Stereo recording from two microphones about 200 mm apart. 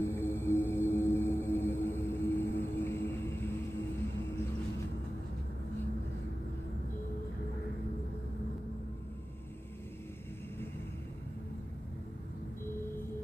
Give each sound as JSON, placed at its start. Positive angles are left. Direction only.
{"t": 0.0, "sound": "music", "side_deg": 10}